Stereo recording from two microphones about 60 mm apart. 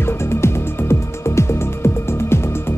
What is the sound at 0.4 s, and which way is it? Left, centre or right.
Music, left.